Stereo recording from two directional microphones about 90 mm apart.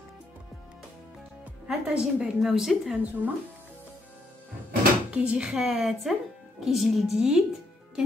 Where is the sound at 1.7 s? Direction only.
10° right (ahead or behind).